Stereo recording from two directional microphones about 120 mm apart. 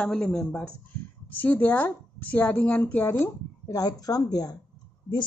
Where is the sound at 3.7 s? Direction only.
30° left (ahead or behind).